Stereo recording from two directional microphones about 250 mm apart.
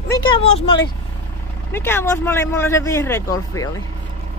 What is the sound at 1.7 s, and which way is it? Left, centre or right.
Speech, centre.